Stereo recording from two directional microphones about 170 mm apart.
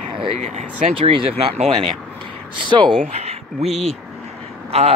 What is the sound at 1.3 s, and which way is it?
Speech, 40° right (ahead or behind).